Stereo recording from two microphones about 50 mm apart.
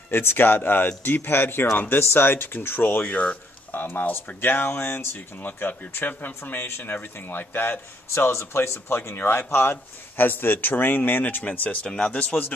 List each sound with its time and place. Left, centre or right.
0.1 s speech: left
1.7 s speech: left
3.0 s speech: left
3.7 s speech: left
5.5 s speech: left
9.1 s speech: left
9.4 s speech: left
11.8 s speech: left